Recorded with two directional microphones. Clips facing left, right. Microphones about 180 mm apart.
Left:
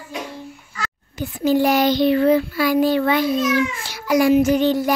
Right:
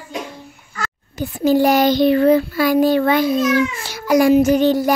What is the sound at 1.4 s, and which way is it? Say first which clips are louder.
Child singing: right 3 dB; 40° right (ahead or behind).